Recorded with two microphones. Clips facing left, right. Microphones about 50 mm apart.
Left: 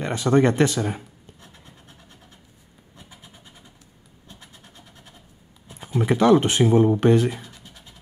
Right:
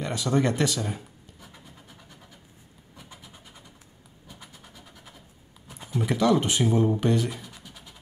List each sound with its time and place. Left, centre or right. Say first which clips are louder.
0.0 s speech: left 6 dB; left
5.9 s speech: left 6 dB; left